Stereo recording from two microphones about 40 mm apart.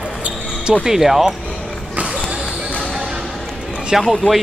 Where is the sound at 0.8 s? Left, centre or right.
Centre.